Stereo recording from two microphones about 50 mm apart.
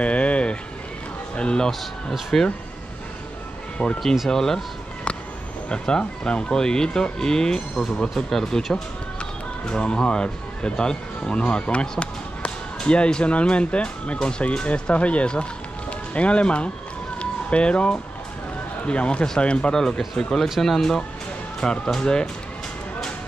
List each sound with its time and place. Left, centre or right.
0.0 s a sound: left
1.3 s speech: centre
1.7 s speech: centre
4.0 s speech: centre
5.7 s speech: centre
9.2 s speech: centre
17.2 s music: left
18.9 s speech: left
19.7 s speech: centre